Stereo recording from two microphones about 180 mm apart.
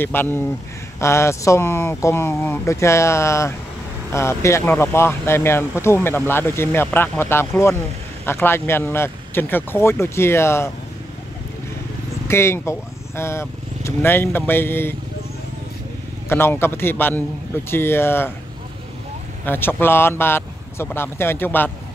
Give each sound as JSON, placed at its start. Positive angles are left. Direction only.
{"t": 0.0, "sound": "speech", "side_deg": 10}
{"t": 12.3, "sound": "speech", "side_deg": 15}
{"t": 16.3, "sound": "speech", "side_deg": 15}
{"t": 19.4, "sound": "speech", "side_deg": 10}